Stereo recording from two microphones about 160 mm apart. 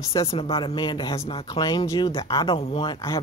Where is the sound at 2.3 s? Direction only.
35° left (ahead or behind).